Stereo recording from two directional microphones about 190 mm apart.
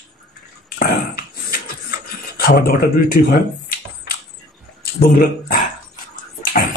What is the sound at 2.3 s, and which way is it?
Speech, 50° left (ahead or behind).